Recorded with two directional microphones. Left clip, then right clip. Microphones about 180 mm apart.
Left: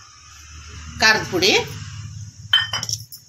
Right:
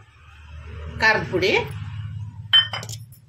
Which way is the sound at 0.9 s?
50° left (ahead or behind).